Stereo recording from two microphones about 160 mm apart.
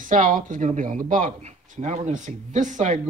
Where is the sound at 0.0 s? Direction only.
55° right (ahead or behind).